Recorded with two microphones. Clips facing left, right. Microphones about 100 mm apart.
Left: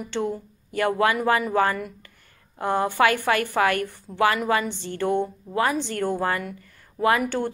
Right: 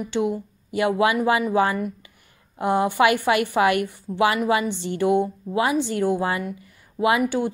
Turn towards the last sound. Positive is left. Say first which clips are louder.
# right 1 dB
turn(degrees=-10)  # may be behind; listen again after turning